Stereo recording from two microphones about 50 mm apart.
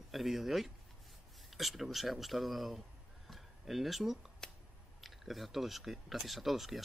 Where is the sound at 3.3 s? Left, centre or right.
Centre.